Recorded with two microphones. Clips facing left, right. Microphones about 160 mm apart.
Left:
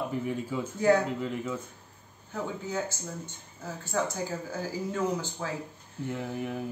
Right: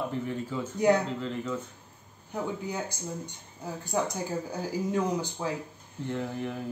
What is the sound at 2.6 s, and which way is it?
Speech, 15° right (ahead or behind).